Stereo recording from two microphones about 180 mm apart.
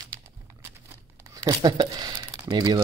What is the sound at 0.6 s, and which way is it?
Crumpling, 15° right (ahead or behind).